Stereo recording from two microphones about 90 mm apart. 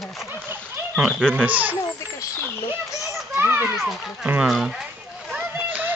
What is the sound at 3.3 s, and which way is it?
Children playing, 25° right (ahead or behind).